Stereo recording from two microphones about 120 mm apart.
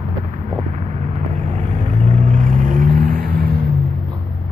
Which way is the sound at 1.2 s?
70° right (ahead or behind).